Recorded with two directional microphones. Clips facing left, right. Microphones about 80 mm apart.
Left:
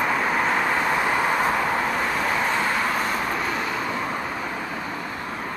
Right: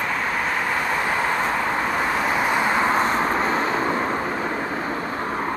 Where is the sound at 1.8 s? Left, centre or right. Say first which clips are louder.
Right 2 dB; centre.